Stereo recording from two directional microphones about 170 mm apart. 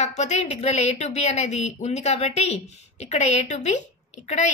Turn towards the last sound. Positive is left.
turn(degrees=45)  # may be behind; listen again after turning